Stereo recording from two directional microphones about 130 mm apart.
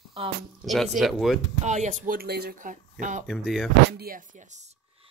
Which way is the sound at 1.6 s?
65° right (ahead or behind).